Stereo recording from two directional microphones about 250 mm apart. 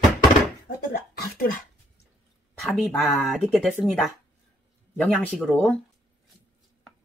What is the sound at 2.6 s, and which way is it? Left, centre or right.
Speech, centre.